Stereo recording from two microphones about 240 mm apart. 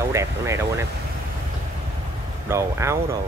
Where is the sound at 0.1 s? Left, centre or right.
Centre.